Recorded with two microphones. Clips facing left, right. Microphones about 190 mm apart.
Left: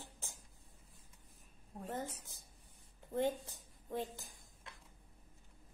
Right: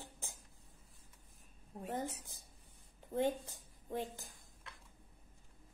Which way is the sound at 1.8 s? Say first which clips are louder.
Right 2 dB; 15° right (ahead or behind).